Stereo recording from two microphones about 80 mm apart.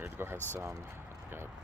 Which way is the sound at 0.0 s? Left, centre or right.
Right.